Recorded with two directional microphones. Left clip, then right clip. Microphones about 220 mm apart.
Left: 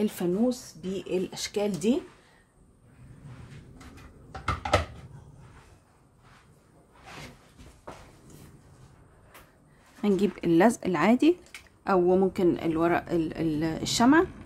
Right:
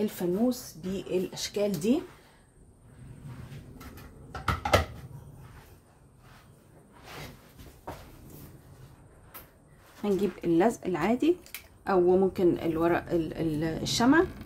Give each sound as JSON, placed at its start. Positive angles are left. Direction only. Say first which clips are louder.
{"t": 0.0, "sound": "speech", "louder": "left 1 dB", "side_deg": 40}
{"t": 10.0, "sound": "speech", "louder": "left 2 dB", "side_deg": 40}